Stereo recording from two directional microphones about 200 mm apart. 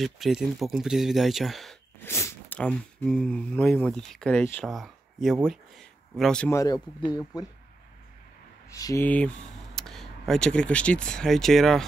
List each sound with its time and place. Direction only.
0.0 s speech: centre (ahead or behind)
2.0 s speech: 15° left (ahead or behind)
6.5 s speech: 20° left (ahead or behind)
8.7 s speech: 15° left (ahead or behind)